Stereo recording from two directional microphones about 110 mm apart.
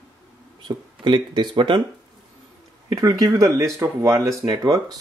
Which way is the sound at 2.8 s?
30° right (ahead or behind).